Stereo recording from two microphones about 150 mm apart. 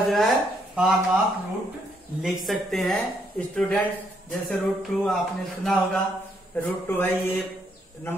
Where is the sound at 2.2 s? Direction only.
Centre (ahead or behind).